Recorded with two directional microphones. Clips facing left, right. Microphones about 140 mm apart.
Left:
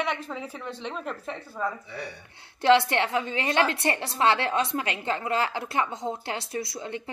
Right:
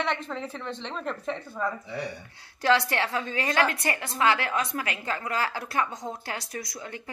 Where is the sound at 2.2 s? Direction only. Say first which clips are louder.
Left 5 dB; 25° left (ahead or behind).